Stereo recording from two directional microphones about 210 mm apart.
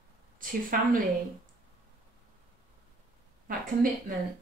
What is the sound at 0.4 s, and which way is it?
Speech, 40° right (ahead or behind).